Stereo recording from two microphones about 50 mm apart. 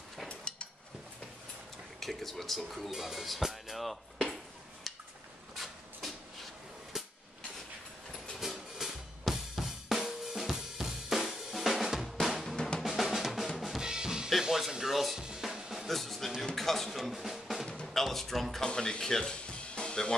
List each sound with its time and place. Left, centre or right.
0.3 s a sound: left
2.0 s speech: centre
4.9 s a sound: centre
8.4 s drum: centre
12.5 s drum: centre
12.8 s drum: centre
14.4 s music: centre
15.1 s drum: centre
15.9 s music: centre
18.6 s speech: centre
19.5 s music: centre